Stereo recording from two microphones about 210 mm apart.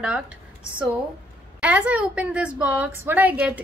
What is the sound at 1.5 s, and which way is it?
A woman's voice, 5° right (ahead or behind).